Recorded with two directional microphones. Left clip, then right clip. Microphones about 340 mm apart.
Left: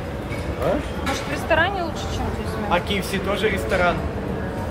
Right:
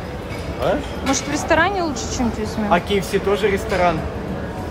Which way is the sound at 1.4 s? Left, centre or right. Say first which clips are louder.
Right 3 dB; right.